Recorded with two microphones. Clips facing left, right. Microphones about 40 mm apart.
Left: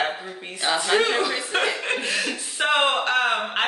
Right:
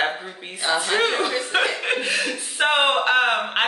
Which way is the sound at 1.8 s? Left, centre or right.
Centre.